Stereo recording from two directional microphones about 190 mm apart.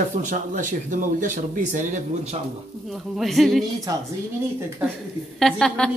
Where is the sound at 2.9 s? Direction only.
Centre (ahead or behind).